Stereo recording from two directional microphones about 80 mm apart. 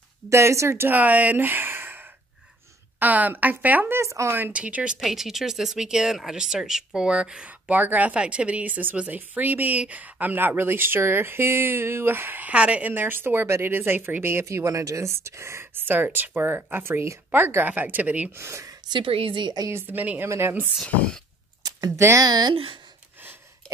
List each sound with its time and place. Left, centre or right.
0.3 s speech: right
3.9 s speech: right
4.5 s speech: centre
5.0 s speech: centre
18.3 s speech: right
18.9 s a woman's voice: right
19.7 s speech: right
20.8 s a woman's voice: centre
21.6 s a sound: right
22.2 s speech: right